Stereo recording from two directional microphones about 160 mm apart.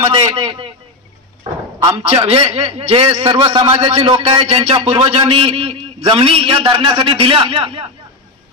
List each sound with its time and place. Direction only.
0.0 s a man's voice: 30° right (ahead or behind)
1.8 s a man's voice: 30° right (ahead or behind)